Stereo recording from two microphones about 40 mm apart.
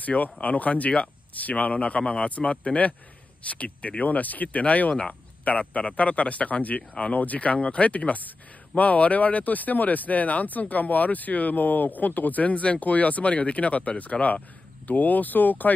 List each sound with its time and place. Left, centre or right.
0.0 s speech: left